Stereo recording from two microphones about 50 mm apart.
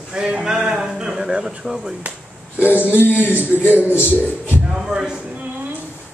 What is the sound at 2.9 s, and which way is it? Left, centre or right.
Speech, left.